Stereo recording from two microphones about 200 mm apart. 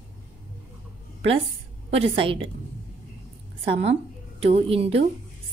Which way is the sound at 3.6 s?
30° right (ahead or behind).